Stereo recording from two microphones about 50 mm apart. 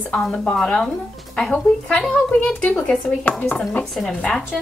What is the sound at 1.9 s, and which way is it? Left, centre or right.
A woman's voice, centre.